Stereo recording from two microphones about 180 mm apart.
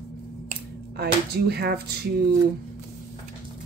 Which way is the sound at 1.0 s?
65° right (ahead or behind).